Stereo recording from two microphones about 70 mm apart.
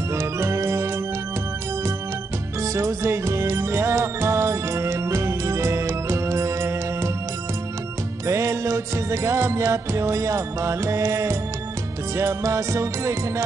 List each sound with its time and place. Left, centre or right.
0.1 s organ: right
2.6 s music: right
8.3 s music: right